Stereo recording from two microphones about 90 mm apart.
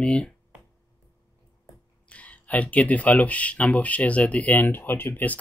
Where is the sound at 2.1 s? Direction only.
15° left (ahead or behind).